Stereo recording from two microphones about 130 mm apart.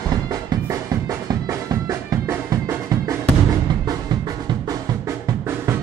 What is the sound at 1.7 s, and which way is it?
Music, 25° right (ahead or behind).